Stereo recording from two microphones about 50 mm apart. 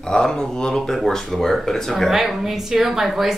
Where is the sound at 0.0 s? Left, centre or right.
Centre.